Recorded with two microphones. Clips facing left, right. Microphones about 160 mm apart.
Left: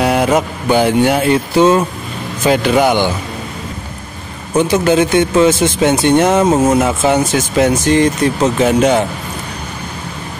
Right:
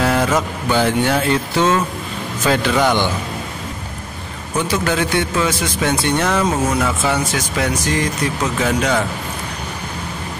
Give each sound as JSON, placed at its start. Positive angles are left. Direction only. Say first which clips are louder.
{"t": 0.0, "sound": "mantra", "louder": "left 3 dB", "side_deg": 15}
{"t": 0.7, "sound": "speech", "louder": "left 5 dB", "side_deg": 10}
{"t": 4.6, "sound": "speech", "louder": "left 7 dB", "side_deg": 20}